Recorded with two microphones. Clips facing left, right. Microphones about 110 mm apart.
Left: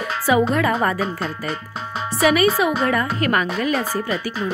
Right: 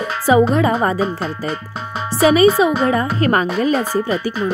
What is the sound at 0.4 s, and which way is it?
A woman's voice, 20° right (ahead or behind).